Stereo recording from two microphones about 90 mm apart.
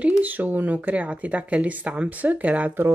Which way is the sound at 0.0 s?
20° right (ahead or behind).